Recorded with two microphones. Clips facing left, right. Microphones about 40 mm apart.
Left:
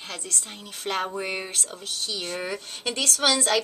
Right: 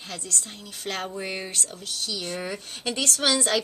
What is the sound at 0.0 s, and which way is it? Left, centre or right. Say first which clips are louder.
Speech: even; centre.